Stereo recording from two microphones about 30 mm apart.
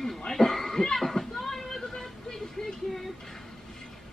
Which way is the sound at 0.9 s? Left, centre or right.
Centre.